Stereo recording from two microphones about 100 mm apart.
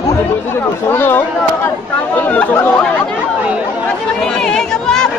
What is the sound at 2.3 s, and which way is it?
Speech, 15° left (ahead or behind).